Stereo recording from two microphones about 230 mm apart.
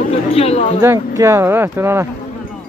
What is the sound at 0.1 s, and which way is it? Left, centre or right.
Speech, left.